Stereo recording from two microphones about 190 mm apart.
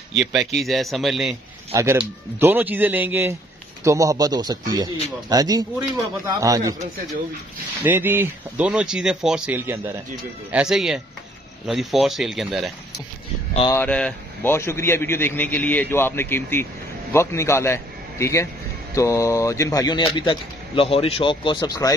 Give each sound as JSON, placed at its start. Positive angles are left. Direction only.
{"t": 0.1, "sound": "speech", "side_deg": 0}
{"t": 1.7, "sound": "speech", "side_deg": -15}
{"t": 7.8, "sound": "speech", "side_deg": -10}
{"t": 13.7, "sound": "a man's voice", "side_deg": 10}